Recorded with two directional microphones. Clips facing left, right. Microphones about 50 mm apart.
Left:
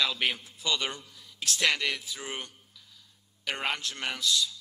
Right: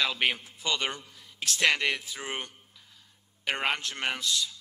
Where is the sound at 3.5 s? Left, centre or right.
Right.